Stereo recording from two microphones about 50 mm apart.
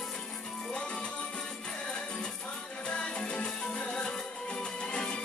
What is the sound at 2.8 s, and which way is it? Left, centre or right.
Music, centre.